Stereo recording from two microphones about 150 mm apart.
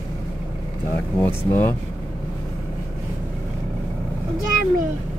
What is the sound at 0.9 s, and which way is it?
Speech, 15° left (ahead or behind).